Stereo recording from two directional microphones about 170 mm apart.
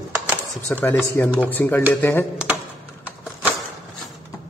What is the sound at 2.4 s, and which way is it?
Typing, 5° right (ahead or behind).